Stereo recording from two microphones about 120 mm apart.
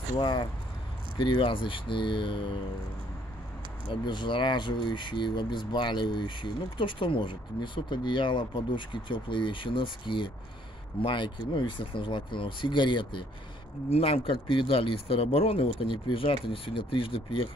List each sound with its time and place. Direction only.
0.2 s speech: 40° left (ahead or behind)
3.9 s speech: 40° left (ahead or behind)
13.8 s speech: 55° left (ahead or behind)